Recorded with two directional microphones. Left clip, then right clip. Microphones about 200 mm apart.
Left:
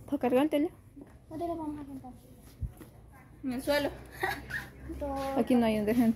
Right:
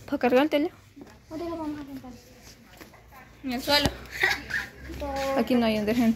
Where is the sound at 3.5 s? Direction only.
50° left (ahead or behind).